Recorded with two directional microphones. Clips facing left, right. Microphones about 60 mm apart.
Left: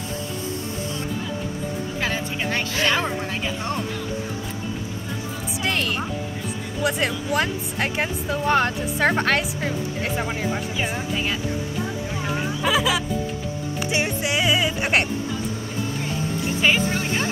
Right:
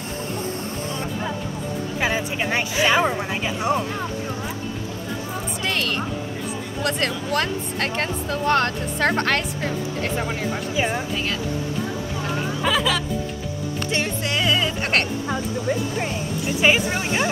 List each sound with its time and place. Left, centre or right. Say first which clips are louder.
2.0 s speech: right 4 dB; centre
5.7 s speech: even; centre
12.6 s music: left 1 dB; centre
16.6 s speech: right 2 dB; centre